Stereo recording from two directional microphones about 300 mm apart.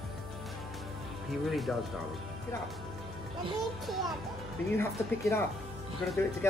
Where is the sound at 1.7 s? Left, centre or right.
Centre.